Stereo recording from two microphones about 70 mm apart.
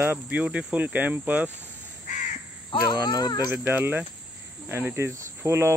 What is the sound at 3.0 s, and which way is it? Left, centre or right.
Speech, left.